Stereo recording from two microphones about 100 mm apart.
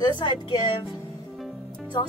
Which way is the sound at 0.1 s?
50° left (ahead or behind).